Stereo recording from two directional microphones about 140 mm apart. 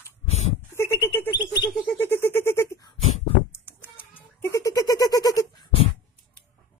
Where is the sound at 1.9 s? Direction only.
15° left (ahead or behind).